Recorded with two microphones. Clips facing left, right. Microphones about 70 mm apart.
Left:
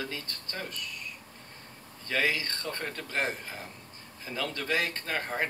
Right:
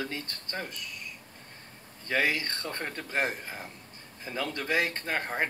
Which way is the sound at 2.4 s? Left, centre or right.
Right.